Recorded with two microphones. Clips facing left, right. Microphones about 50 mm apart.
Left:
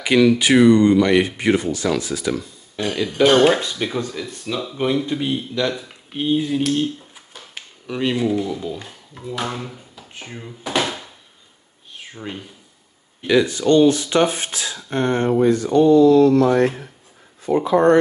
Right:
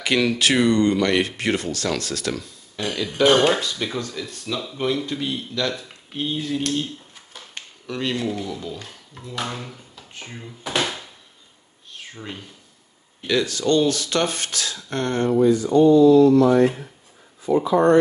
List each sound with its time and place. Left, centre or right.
0.0 s speech: centre
10.6 s a sound: centre
13.3 s speech: centre
15.4 s speech: left